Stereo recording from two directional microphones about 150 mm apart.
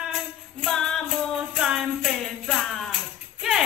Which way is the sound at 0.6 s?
5° left (ahead or behind).